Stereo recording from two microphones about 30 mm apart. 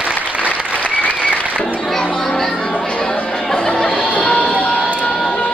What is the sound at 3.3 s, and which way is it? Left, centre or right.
Music, centre.